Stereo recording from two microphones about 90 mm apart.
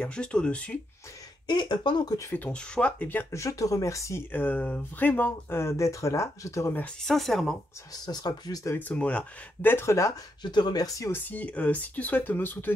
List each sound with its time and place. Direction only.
0.0 s speech: 10° left (ahead or behind)
1.5 s speech: 55° left (ahead or behind)
2.5 s speech: 15° left (ahead or behind)
3.3 s speech: 35° left (ahead or behind)
4.3 s speech: 20° left (ahead or behind); by 6.7 s 35° left (ahead or behind)
7.0 s speech: 5° left (ahead or behind)
7.9 s speech: 50° left (ahead or behind)
8.6 s speech: 20° left (ahead or behind)
10.4 s speech: 55° left (ahead or behind)
11.1 s speech: 20° left (ahead or behind)